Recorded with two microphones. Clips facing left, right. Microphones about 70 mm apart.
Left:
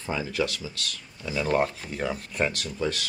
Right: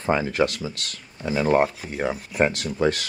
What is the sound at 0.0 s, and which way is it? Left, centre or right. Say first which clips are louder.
Speech: right 7 dB; right.